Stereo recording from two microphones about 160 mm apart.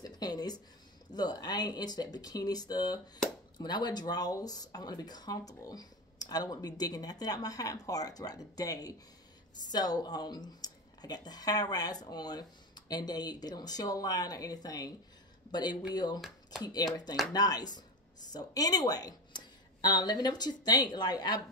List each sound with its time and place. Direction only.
0.0 s a sound: 25° left (ahead or behind)
1.1 s speech: 25° left (ahead or behind)
16.2 s speech: centre (ahead or behind)
16.6 s speech: 25° left (ahead or behind)